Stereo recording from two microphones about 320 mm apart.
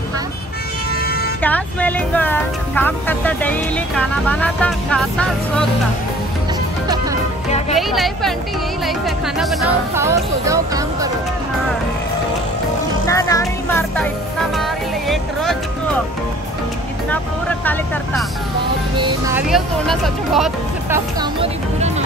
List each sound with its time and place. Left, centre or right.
1.4 s speech: centre
7.7 s speech: centre
13.0 s music: centre
17.1 s speech: centre
18.9 s speech: centre
21.2 s speech: centre